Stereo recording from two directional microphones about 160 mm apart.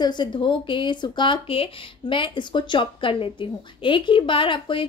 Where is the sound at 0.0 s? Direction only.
30° left (ahead or behind).